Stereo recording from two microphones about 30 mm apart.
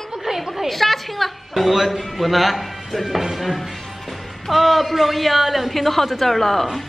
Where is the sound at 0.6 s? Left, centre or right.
Centre.